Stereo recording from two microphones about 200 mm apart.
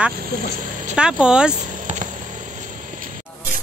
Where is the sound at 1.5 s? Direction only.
40° right (ahead or behind).